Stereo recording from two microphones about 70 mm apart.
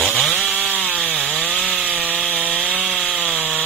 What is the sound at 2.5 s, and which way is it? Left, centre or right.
Rub, centre.